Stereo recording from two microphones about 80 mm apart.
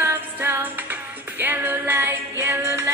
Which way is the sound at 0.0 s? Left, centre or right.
Right.